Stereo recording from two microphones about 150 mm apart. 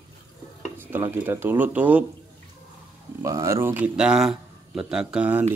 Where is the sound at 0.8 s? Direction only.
15° right (ahead or behind).